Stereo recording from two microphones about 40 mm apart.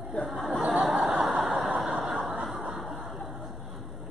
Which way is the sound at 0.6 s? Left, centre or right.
Right.